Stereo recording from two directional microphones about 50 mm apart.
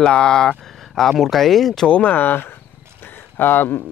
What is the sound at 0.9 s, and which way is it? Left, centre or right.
Speech, centre.